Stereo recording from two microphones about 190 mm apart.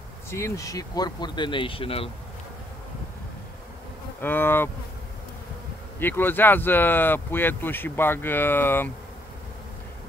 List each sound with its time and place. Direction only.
0.3 s speech: 15° left (ahead or behind)
4.2 s speech: 10° left (ahead or behind)
5.9 s speech: 10° left (ahead or behind)